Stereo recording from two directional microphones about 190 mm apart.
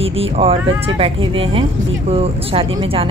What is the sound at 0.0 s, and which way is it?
Speech, 30° right (ahead or behind).